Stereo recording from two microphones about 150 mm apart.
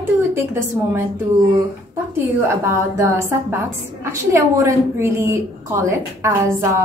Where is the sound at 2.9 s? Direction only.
20° right (ahead or behind).